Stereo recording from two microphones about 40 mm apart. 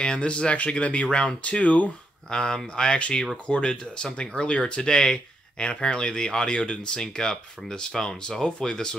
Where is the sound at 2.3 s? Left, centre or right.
Centre.